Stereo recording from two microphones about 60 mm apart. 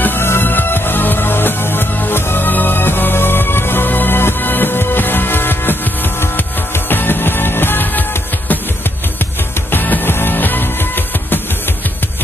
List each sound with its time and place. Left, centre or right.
0.0 s music: left
6.9 s music: left
9.7 s music: left